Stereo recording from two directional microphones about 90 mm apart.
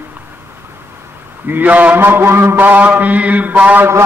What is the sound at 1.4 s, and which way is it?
Mantra, 20° right (ahead or behind).